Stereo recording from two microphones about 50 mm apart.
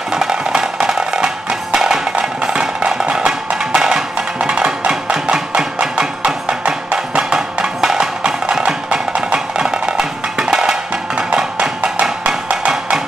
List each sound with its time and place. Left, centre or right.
0.1 s music: centre